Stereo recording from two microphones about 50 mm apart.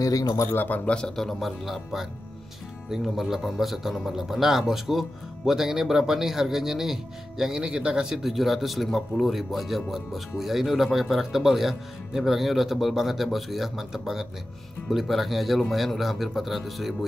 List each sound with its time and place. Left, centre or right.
0.5 s speech: left
0.8 s a man's voice: centre